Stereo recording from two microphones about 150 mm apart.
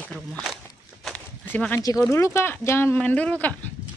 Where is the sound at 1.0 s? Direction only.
10° left (ahead or behind).